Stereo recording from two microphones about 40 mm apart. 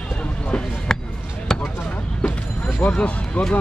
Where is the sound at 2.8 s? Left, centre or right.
Left.